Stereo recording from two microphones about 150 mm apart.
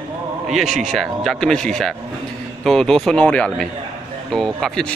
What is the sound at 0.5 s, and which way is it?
A man's voice, centre (ahead or behind).